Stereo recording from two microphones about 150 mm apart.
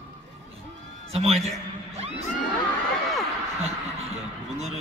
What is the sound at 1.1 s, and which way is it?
Speech, 45° right (ahead or behind).